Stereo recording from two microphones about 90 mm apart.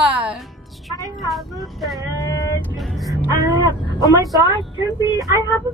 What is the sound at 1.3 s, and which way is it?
Speech, centre (ahead or behind).